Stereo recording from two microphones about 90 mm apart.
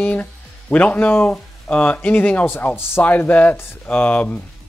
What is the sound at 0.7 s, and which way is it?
Speech, 15° left (ahead or behind).